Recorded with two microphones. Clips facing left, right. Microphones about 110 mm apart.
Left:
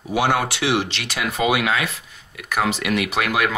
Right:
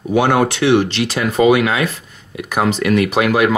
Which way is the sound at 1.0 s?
20° right (ahead or behind).